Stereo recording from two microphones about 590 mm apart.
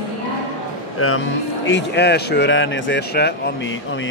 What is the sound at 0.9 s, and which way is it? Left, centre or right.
A man's voice, left.